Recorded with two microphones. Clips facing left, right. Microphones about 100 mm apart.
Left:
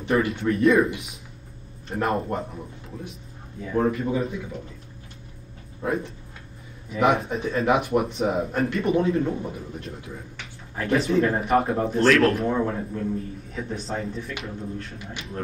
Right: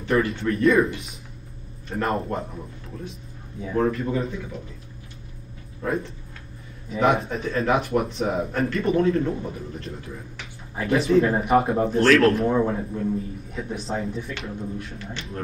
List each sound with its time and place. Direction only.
0.3 s a man's voice: 10° left (ahead or behind)
2.0 s a man's voice: 5° left (ahead or behind)
3.6 s a man's voice: 5° left (ahead or behind)
5.8 s speech: 20° left (ahead or behind)
6.9 s a man's voice: centre (ahead or behind)